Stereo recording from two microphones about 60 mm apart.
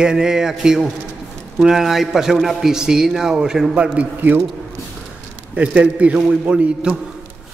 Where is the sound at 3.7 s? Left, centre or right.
Centre.